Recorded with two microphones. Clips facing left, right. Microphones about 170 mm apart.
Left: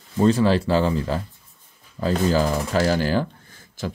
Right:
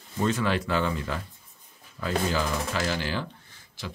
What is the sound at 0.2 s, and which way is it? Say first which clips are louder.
Speech: left 8 dB; 35° left (ahead or behind).